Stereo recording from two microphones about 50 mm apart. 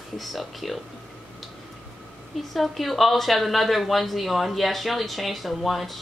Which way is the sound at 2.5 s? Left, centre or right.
Centre.